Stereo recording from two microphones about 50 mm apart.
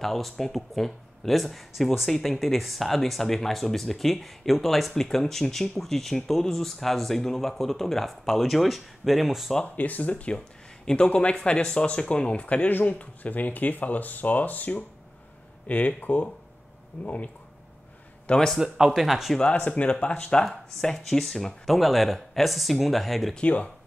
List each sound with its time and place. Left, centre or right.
0.0 s speech: centre
9.8 s speech: left
18.3 s speech: centre
18.6 s speech: centre
19.7 s speech: left
20.8 s speech: centre
23.4 s speech: left